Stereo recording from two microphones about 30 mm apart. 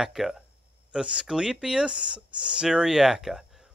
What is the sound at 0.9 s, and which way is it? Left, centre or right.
Speech, right.